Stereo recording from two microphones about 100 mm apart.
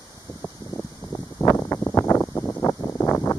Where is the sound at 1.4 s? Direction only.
30° left (ahead or behind).